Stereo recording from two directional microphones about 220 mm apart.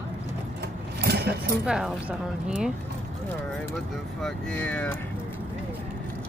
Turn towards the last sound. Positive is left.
turn(degrees=5)  # may be behind; listen again after turning